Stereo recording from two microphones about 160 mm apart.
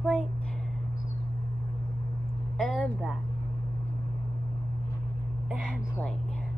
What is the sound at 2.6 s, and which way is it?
Speech, 5° left (ahead or behind).